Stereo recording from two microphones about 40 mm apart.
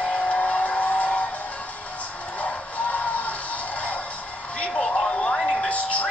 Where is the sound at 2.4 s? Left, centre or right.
Left.